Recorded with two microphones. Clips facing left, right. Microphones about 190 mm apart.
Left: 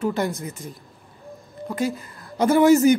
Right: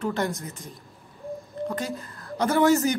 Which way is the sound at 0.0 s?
5° left (ahead or behind).